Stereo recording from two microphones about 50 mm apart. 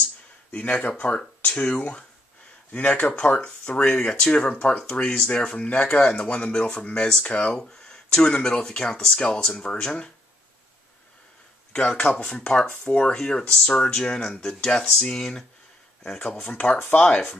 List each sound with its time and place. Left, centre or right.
0.5 s speech: left
2.7 s speech: left
11.7 s speech: centre
13.0 s speech: centre